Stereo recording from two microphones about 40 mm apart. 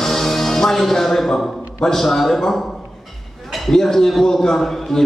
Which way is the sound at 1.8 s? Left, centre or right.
Centre.